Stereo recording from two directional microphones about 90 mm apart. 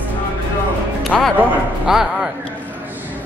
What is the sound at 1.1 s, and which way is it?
Speech, 5° left (ahead or behind).